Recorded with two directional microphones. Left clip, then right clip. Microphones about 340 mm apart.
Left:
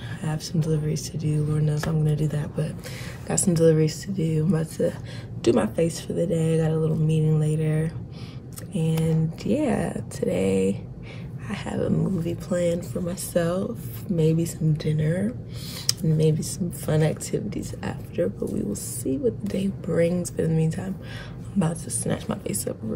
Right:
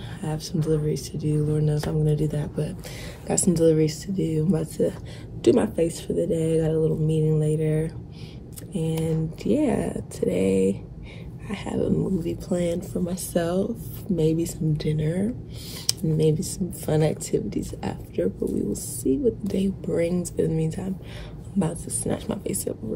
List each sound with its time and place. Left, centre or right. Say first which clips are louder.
0.2 s speech: right 1 dB; centre